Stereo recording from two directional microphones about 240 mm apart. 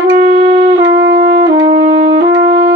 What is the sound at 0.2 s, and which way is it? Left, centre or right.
Music, right.